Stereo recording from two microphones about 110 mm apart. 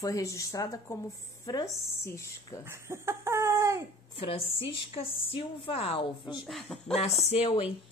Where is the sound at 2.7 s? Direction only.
25° right (ahead or behind).